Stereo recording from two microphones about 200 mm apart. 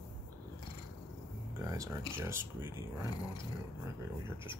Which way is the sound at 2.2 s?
10° right (ahead or behind).